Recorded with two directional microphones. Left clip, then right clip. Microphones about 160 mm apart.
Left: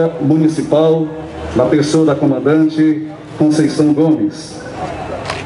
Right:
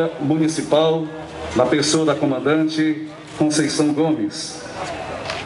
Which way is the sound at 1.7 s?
20° right (ahead or behind).